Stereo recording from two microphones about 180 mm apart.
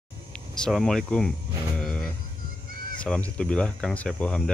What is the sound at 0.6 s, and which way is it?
Speech, 5° left (ahead or behind).